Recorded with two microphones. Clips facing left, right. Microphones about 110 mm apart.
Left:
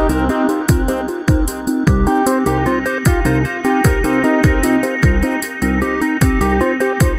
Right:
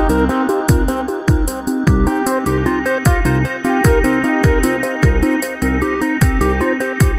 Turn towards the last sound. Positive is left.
turn(degrees=0)  # may be behind; listen again after turning